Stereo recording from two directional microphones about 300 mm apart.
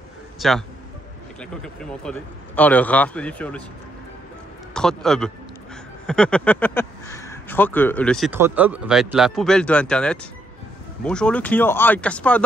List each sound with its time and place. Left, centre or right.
0.4 s a man's voice: centre
4.7 s speech: centre